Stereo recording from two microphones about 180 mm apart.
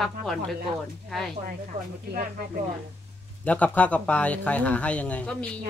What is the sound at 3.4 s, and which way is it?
Speech, 10° left (ahead or behind).